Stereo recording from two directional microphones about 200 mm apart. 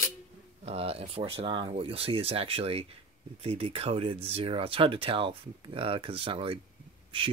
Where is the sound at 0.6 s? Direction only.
30° right (ahead or behind).